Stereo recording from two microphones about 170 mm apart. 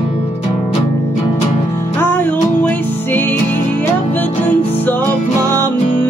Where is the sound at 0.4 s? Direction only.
40° left (ahead or behind).